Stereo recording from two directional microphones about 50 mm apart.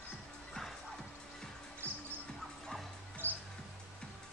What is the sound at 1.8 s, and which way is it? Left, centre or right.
Music, right.